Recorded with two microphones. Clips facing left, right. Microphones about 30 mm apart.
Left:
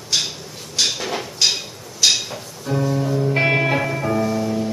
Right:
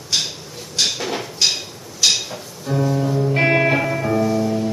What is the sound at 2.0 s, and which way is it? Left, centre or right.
Music, centre.